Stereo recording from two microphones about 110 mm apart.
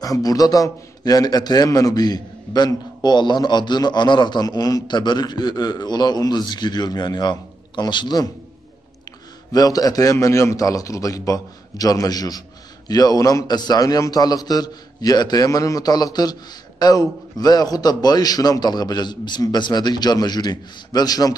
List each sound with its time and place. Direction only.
0.0 s a man's voice: 35° left (ahead or behind)
9.5 s a man's voice: 35° left (ahead or behind)